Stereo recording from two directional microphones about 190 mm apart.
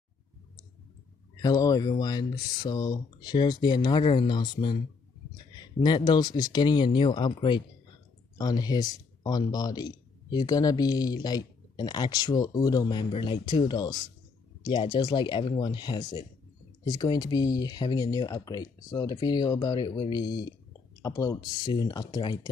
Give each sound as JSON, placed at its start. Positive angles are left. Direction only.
{"t": 1.4, "sound": "speech", "side_deg": 20}